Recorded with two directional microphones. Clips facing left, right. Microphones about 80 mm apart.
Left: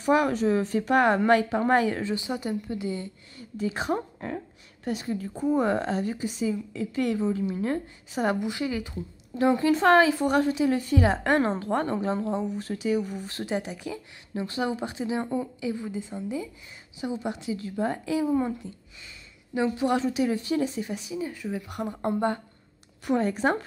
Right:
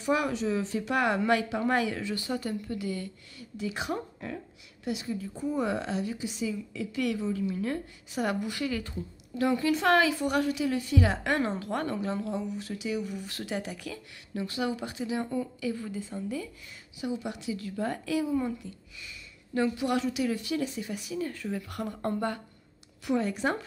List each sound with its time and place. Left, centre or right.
0.0 s speech: left
2.1 s speech: centre
3.5 s a woman's voice: left
19.8 s speech: left
21.2 s speech: centre
23.0 s a woman's voice: left